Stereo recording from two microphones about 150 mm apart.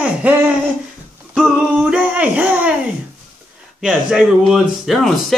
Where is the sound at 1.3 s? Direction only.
5° right (ahead or behind).